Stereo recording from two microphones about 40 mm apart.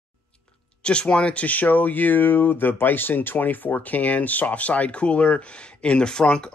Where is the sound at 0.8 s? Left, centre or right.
Left.